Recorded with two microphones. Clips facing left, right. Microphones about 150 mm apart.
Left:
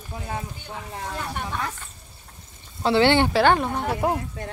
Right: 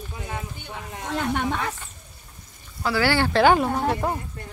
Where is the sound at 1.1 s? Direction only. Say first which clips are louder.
Right 8 dB; 75° right (ahead or behind).